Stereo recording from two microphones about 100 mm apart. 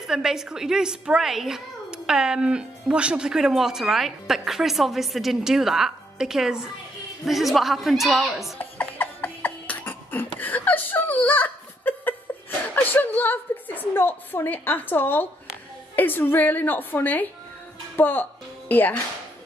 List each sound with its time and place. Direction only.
0.0 s a woman's voice: 5° right (ahead or behind)
8.5 s beatboxing: 15° left (ahead or behind)
10.4 s a woman's voice: 15° left (ahead or behind)